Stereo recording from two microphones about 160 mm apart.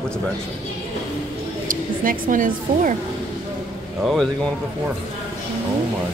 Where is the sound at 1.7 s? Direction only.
55° right (ahead or behind).